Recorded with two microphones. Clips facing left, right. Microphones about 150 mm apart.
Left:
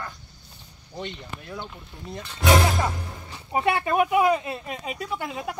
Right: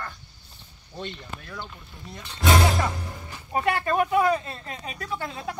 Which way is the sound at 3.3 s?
20° left (ahead or behind).